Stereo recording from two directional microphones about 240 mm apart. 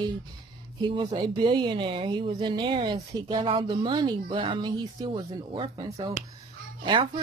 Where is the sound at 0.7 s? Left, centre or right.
Centre.